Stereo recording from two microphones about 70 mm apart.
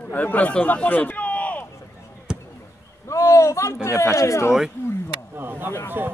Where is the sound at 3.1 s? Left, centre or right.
Left.